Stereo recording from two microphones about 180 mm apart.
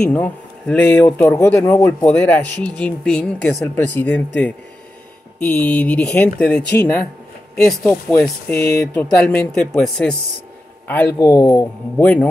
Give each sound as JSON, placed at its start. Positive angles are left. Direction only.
{"t": 0.0, "sound": "speech", "side_deg": 5}
{"t": 5.4, "sound": "speech", "side_deg": 10}
{"t": 11.1, "sound": "speech", "side_deg": 20}
{"t": 12.0, "sound": "speech", "side_deg": 10}